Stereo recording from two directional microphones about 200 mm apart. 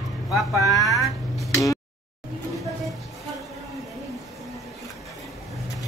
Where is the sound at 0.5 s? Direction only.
15° left (ahead or behind).